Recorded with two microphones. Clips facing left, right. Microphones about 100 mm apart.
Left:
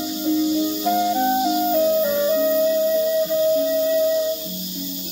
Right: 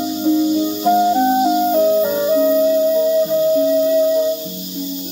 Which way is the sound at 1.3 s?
35° right (ahead or behind).